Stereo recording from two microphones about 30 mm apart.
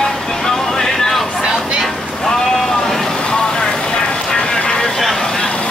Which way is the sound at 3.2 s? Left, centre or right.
Left.